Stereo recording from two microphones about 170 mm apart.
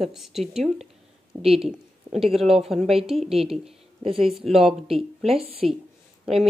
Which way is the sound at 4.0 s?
35° right (ahead or behind).